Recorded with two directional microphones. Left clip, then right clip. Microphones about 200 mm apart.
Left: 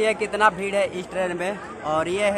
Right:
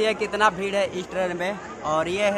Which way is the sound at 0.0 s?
Centre (ahead or behind).